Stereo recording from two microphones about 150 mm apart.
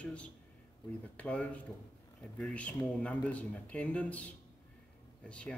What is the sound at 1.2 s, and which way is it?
Speech, 10° left (ahead or behind).